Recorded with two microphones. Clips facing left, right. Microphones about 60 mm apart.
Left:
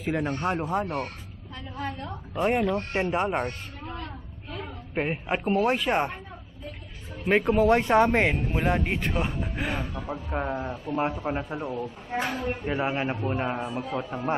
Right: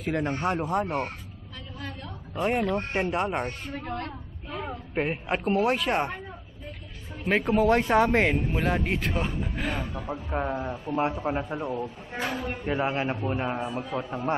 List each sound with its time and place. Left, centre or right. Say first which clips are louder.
0.0 s a man's voice: even; centre
1.8 s a sound: left 6 dB; left
3.0 s a man's voice: left 2 dB; centre
3.8 s a sound: right 3 dB; right
4.9 s a man's voice: even; centre
7.2 s a man's voice: left 2 dB; centre